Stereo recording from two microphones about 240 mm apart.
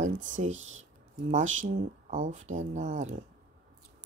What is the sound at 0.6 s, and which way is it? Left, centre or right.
Speech, right.